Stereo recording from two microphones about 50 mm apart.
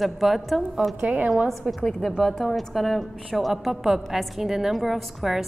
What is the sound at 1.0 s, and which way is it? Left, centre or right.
Speech, right.